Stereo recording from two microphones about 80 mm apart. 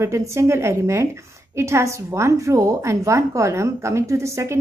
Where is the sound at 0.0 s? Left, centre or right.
Right.